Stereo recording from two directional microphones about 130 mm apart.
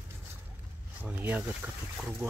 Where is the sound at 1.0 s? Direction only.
15° right (ahead or behind).